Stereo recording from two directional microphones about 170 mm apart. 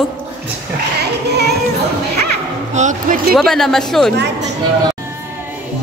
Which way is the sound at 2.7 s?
45° right (ahead or behind).